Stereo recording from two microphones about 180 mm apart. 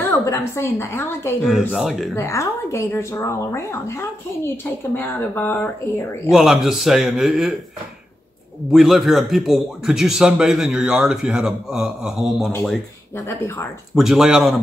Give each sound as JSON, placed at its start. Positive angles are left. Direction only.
{"t": 0.1, "sound": "a woman's voice", "side_deg": 15}
{"t": 1.4, "sound": "a man's voice", "side_deg": -5}
{"t": 2.1, "sound": "a woman's voice", "side_deg": 15}
{"t": 6.3, "sound": "a man's voice", "side_deg": 0}
{"t": 8.7, "sound": "a man's voice", "side_deg": 0}
{"t": 13.9, "sound": "a man's voice", "side_deg": 0}